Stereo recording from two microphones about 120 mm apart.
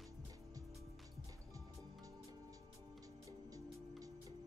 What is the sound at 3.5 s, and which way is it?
Music, 30° right (ahead or behind).